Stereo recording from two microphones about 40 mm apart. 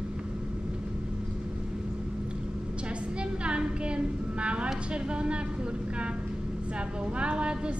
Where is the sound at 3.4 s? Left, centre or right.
Right.